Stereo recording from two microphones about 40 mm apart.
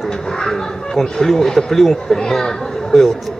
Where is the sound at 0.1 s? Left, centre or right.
Centre.